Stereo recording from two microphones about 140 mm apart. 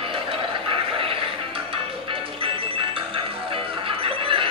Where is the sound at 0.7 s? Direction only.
40° right (ahead or behind).